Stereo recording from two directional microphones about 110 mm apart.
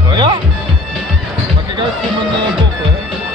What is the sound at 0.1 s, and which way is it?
Music, 45° right (ahead or behind).